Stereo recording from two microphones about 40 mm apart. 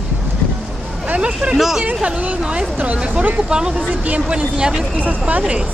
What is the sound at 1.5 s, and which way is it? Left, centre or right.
Speech, centre.